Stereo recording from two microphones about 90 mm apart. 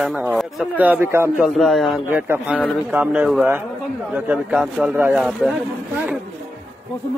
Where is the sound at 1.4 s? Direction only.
Centre (ahead or behind).